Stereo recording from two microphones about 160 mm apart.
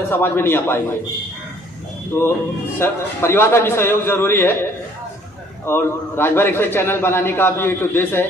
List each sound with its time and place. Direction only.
0.1 s a man's voice: 15° left (ahead or behind)
2.1 s a man's voice: 15° left (ahead or behind)
5.7 s a man's voice: 15° left (ahead or behind)